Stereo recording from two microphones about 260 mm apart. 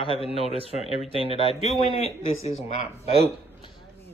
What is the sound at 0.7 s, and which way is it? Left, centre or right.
Speech, left.